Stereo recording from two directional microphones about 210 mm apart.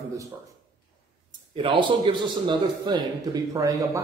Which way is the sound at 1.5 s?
25° right (ahead or behind).